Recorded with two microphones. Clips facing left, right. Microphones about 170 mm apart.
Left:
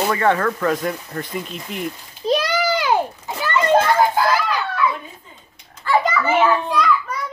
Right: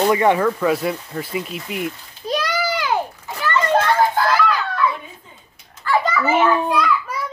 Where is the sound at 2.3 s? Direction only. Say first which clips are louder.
Left 3 dB; 25° left (ahead or behind).